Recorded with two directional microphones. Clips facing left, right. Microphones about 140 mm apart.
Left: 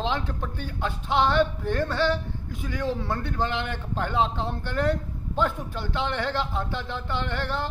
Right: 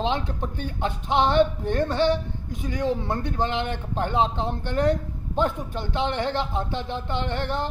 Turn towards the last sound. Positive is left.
turn(degrees=-20)  # may be behind; listen again after turning